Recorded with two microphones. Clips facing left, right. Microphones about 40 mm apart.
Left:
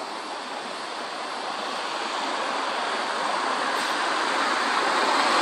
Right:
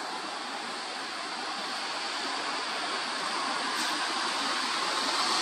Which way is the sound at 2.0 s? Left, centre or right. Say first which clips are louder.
Left 6 dB; left.